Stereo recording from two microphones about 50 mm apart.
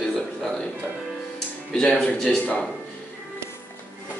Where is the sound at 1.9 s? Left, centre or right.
Centre.